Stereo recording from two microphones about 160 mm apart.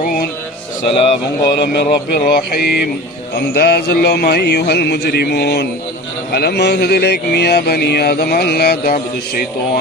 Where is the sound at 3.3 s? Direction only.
85° left.